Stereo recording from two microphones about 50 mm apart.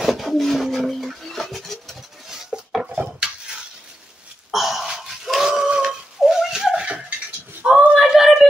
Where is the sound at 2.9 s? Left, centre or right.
Centre.